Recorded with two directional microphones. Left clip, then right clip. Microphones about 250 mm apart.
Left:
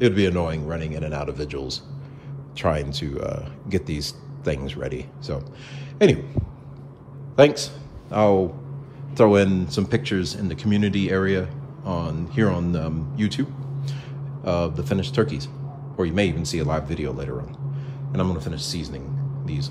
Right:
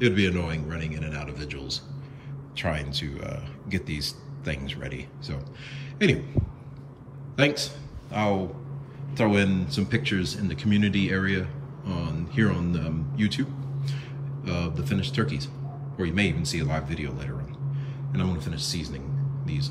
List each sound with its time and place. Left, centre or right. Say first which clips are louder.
0.0 s speech: left 4 dB; centre
6.4 s speech: even; right
7.3 s a man's voice: left 8 dB; centre